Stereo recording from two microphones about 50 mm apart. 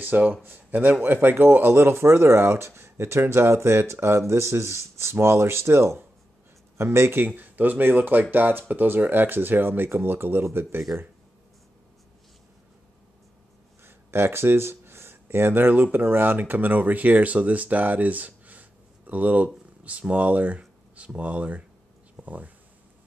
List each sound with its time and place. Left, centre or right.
0.0 s speech: right
7.2 s speech: right
13.8 s speech: right
22.1 s a sound: right